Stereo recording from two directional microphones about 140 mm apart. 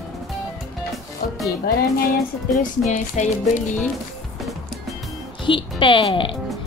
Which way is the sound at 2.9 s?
60° left (ahead or behind).